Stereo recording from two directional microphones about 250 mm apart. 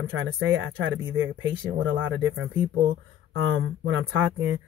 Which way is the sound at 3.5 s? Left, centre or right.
Right.